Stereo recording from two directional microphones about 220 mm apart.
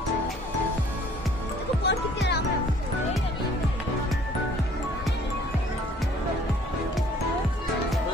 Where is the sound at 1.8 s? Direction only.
50° left (ahead or behind).